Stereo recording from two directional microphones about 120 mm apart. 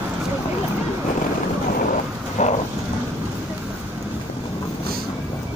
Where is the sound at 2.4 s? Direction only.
80° left.